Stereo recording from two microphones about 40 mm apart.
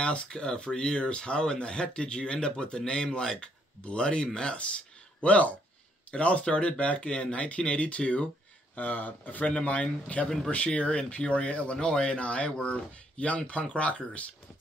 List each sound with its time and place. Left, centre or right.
0.0 s speech: left
8.7 s speech: left
9.5 s speech: left